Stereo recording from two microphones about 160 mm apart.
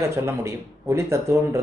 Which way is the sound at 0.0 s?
15° right (ahead or behind).